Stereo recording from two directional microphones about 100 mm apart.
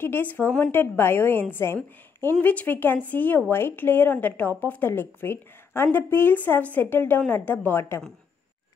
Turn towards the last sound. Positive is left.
turn(degrees=20)  # may be behind; listen again after turning